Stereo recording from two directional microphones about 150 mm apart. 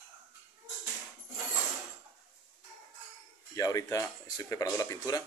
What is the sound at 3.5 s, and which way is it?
Speech, 20° left (ahead or behind).